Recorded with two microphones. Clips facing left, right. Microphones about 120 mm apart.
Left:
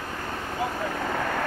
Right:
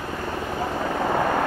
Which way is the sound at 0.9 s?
25° right (ahead or behind).